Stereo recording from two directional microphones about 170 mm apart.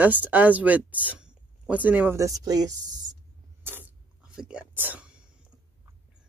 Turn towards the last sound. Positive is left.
turn(degrees=-10)  # may be behind; listen again after turning